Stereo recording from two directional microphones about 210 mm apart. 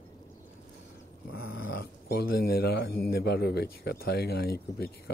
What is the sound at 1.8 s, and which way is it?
Speech, 50° left (ahead or behind).